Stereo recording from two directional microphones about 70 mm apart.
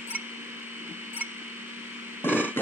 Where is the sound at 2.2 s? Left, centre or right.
Left.